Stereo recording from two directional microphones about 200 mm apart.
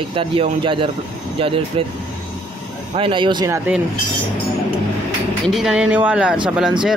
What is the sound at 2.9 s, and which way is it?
Speech, 25° right (ahead or behind).